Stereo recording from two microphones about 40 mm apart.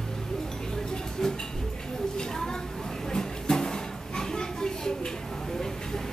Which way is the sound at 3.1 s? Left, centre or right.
Centre.